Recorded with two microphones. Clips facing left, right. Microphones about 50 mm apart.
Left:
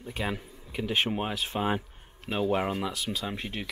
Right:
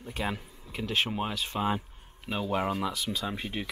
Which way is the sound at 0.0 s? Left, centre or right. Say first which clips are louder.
Left 1 dB; centre.